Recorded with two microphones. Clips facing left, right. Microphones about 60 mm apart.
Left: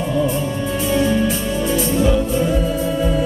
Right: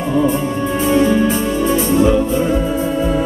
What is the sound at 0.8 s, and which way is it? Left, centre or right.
Music, right.